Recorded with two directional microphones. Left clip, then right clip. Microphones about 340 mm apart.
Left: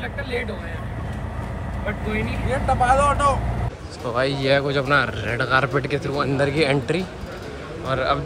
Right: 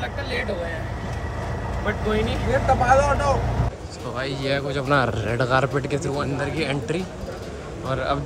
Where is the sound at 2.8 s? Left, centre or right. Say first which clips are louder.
Left 2 dB; left.